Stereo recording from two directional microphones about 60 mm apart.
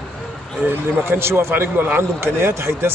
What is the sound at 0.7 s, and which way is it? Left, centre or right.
Speech, right.